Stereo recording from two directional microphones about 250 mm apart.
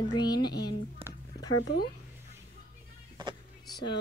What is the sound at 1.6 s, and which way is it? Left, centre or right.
Speech, left.